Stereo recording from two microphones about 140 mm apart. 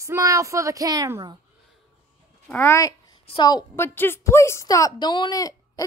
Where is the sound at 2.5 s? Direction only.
15° left (ahead or behind).